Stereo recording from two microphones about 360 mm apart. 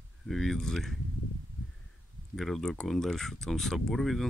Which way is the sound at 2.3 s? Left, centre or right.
Centre.